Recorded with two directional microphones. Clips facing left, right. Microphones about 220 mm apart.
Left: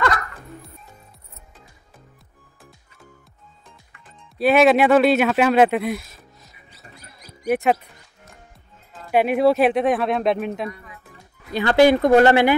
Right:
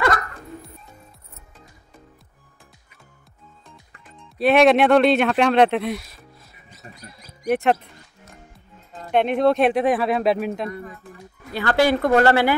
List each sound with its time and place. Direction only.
4.4 s speech: centre (ahead or behind)
7.4 s speech: centre (ahead or behind)
9.1 s speech: 5° left (ahead or behind)
11.5 s speech: 20° left (ahead or behind)